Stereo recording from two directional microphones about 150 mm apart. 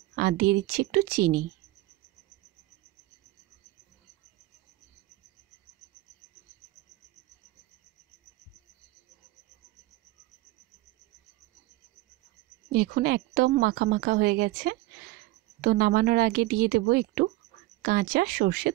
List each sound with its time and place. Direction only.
0.1 s speech: 90° right
12.7 s a woman's voice: 80° right
17.8 s speech: 75° right (ahead or behind)